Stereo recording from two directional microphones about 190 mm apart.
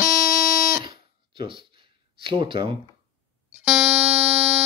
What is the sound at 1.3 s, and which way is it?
Speech, 25° right (ahead or behind).